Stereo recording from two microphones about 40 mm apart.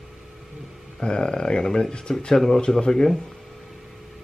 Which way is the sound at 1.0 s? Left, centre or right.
Centre.